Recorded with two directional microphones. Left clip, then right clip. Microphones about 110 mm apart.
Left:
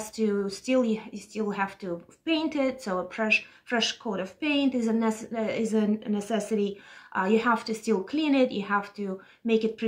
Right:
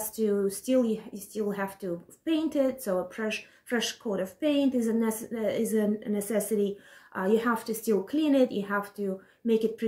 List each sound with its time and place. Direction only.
0.1 s a woman's voice: 15° right (ahead or behind)